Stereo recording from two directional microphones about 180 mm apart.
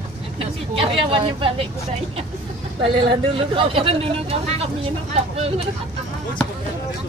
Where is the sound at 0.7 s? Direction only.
30° right (ahead or behind).